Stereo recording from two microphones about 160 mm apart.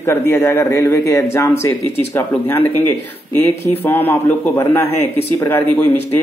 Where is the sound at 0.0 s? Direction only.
15° left (ahead or behind).